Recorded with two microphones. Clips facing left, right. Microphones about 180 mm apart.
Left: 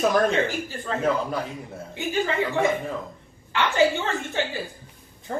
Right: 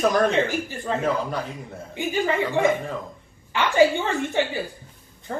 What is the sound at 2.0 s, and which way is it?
A woman's voice, 15° right (ahead or behind).